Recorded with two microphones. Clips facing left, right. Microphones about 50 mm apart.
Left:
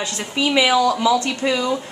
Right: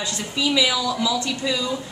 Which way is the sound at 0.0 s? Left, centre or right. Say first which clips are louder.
Left 3 dB; left.